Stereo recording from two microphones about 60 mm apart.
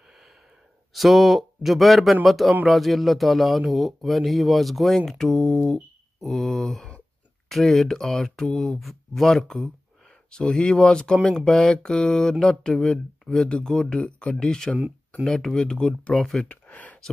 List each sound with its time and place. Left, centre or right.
0.9 s speech: centre
6.2 s speech: centre
16.4 s a sound: left